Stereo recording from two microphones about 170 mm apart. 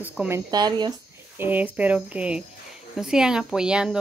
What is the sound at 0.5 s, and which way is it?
Speech, 25° right (ahead or behind).